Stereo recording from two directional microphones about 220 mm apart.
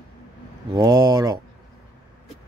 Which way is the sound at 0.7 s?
15° right (ahead or behind).